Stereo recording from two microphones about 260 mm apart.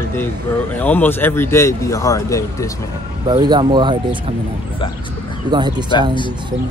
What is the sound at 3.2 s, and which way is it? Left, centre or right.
Speech, centre.